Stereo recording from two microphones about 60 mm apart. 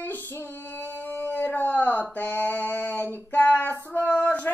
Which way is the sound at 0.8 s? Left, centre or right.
Left.